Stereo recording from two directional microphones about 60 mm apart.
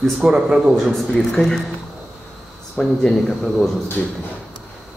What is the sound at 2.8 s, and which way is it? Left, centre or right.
Speech, centre.